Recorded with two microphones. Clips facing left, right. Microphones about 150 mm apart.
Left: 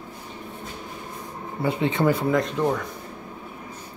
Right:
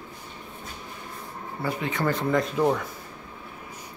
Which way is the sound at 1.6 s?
25° left (ahead or behind).